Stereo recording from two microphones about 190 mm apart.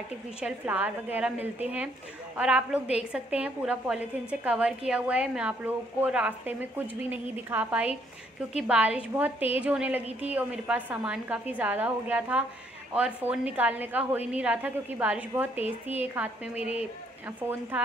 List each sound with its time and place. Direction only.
0.4 s a woman's voice: 5° right (ahead or behind)
15.5 s a woman's voice: 30° left (ahead or behind)
17.5 s a woman's voice: 10° right (ahead or behind)